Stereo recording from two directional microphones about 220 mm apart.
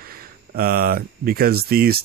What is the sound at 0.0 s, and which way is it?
A man's voice, 40° right (ahead or behind).